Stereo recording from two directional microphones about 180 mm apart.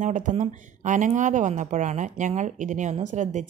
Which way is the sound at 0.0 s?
45° right (ahead or behind).